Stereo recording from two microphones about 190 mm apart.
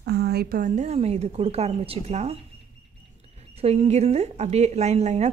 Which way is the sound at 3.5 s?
35° right (ahead or behind).